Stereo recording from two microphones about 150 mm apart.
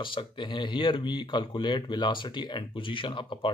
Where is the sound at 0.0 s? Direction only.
35° left (ahead or behind).